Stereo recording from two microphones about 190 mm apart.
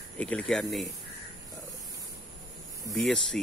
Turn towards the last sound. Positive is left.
turn(degrees=0)  # may be behind; listen again after turning